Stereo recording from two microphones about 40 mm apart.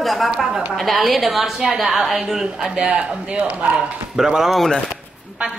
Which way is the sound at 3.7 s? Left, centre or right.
Centre.